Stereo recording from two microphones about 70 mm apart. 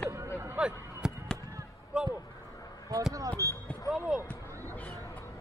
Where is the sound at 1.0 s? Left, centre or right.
Centre.